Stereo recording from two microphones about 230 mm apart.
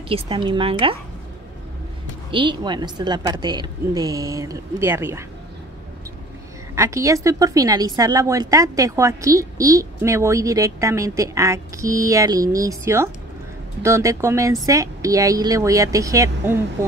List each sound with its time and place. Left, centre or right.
0.1 s speech: right
2.3 s a woman's voice: centre
6.7 s a woman's voice: centre